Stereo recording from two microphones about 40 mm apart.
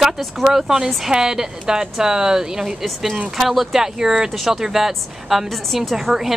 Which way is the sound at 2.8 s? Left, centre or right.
Centre.